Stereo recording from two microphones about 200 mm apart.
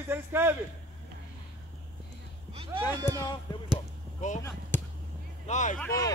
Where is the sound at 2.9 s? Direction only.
15° right (ahead or behind).